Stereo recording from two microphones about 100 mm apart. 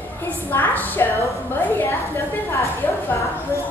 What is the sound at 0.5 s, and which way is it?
Speech, 20° left (ahead or behind).